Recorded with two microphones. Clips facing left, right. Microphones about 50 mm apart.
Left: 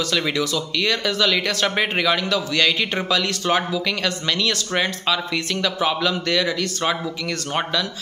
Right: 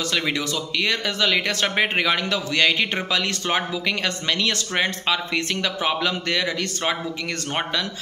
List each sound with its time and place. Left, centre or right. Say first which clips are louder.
0.1 s speech: left 2 dB; right